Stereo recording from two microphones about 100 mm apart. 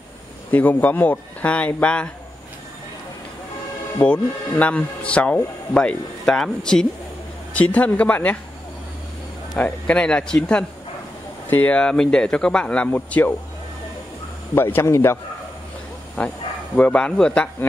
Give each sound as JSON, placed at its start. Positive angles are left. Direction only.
{"t": 0.5, "sound": "a man's voice", "side_deg": 15}
{"t": 4.0, "sound": "a man's voice", "side_deg": 15}
{"t": 9.6, "sound": "a man's voice", "side_deg": 10}
{"t": 14.5, "sound": "a man's voice", "side_deg": 25}
{"t": 16.2, "sound": "a man's voice", "side_deg": 15}